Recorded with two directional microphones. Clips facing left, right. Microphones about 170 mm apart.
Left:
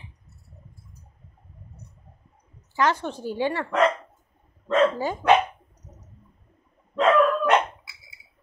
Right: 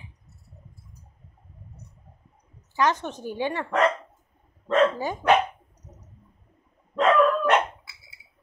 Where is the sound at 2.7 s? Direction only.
20° right (ahead or behind).